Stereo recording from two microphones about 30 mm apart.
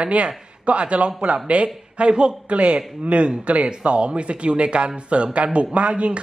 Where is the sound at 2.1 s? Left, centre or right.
Right.